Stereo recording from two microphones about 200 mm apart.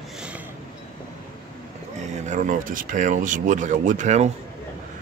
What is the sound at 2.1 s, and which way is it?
Speech, 40° right (ahead or behind).